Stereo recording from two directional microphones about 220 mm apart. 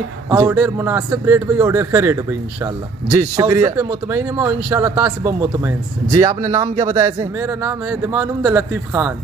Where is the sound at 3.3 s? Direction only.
15° right (ahead or behind).